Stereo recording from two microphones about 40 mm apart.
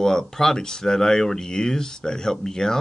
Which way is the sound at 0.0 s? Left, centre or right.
Centre.